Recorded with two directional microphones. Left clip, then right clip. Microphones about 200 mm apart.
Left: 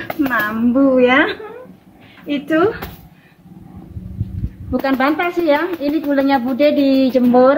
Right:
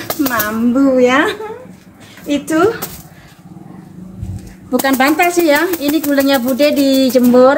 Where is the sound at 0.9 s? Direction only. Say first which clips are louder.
Right 2 dB; centre (ahead or behind).